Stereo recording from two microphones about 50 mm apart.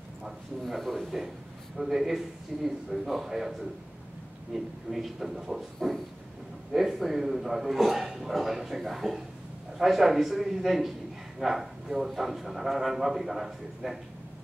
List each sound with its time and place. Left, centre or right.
0.7 s a man's voice: centre
4.6 s a man's voice: centre